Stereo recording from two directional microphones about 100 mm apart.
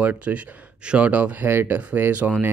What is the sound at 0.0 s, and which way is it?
Speech, 15° right (ahead or behind).